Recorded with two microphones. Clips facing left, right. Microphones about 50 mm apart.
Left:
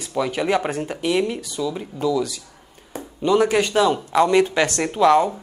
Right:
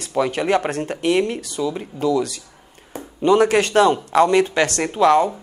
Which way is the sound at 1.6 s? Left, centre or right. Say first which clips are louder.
Right 2 dB; centre.